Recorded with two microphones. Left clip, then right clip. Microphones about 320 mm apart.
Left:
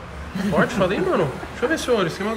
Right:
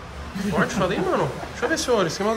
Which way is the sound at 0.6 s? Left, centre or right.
Centre.